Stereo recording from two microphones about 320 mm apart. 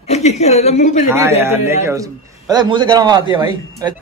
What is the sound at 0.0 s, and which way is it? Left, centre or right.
A woman's voice, centre.